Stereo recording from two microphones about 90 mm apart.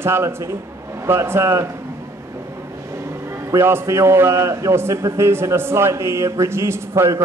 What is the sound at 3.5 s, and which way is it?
A man's voice, 30° right (ahead or behind).